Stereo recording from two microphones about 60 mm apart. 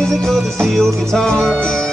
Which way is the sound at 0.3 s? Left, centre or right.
Centre.